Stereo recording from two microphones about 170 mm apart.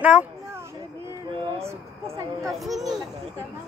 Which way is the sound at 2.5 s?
Centre (ahead or behind).